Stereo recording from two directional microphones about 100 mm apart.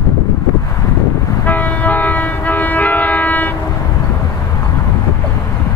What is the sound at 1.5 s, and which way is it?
Train, 15° left (ahead or behind).